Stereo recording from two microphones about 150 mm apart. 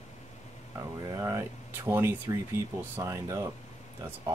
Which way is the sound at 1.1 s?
20° right (ahead or behind).